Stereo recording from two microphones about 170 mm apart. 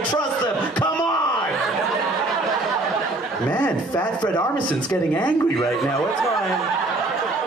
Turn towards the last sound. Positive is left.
turn(degrees=5)  # may be behind; listen again after turning